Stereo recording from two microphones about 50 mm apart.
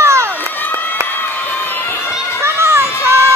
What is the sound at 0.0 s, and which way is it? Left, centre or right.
Run, right.